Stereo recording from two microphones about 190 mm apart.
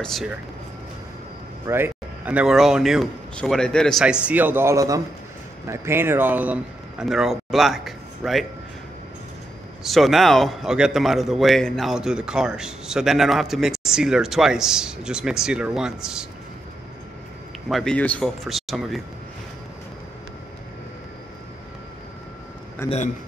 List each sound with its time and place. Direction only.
0.0 s speech: centre (ahead or behind)
1.7 s speech: 10° right (ahead or behind)
9.8 s speech: centre (ahead or behind)
17.6 s speech: centre (ahead or behind)
22.8 s a man's voice: 35° left (ahead or behind)